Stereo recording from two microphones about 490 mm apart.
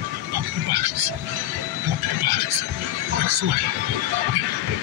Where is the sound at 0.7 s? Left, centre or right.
Right.